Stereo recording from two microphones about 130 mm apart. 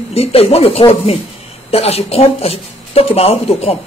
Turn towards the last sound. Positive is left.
turn(degrees=50)  # may be behind; listen again after turning